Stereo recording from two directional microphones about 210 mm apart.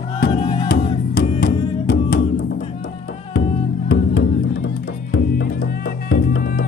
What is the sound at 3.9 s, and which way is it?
Music, 60° left (ahead or behind).